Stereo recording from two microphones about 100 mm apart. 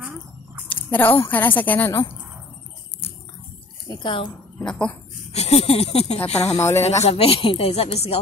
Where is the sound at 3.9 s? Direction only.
55° left (ahead or behind).